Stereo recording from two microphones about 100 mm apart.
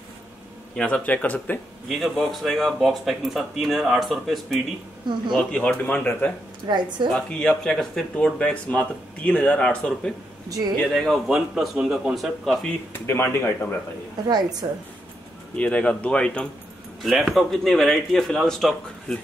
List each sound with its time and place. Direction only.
0.7 s speech: 10° left (ahead or behind)
1.9 s speech: centre (ahead or behind)
5.1 s a woman's voice: 50° right (ahead or behind)
5.4 s speech: 10° left (ahead or behind)
6.7 s a woman's voice: 50° right (ahead or behind)
7.2 s speech: 10° left (ahead or behind)
13.0 s speech: 25° left (ahead or behind)
14.2 s a woman's voice: 40° right (ahead or behind)
15.5 s speech: 10° left (ahead or behind)